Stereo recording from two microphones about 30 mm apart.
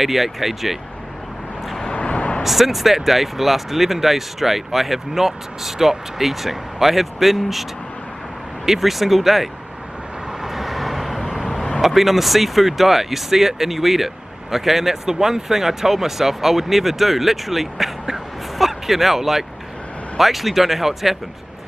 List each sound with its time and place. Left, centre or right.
0.0 s speech: centre
2.0 s vehicle: left
2.4 s speech: centre
8.6 s speech: centre
10.4 s vehicle: centre
11.8 s speech: centre
18.1 s a sound: centre
20.2 s speech: centre